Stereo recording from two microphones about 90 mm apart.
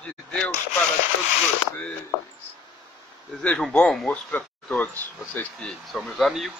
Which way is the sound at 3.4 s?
10° left (ahead or behind).